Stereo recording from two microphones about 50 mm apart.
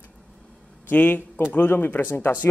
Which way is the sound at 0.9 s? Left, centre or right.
Left.